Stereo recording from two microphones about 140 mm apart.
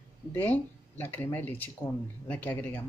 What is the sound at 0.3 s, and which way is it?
Speech, 15° left (ahead or behind).